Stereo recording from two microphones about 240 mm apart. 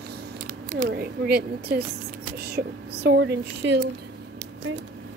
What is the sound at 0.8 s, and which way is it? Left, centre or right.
Speech, right.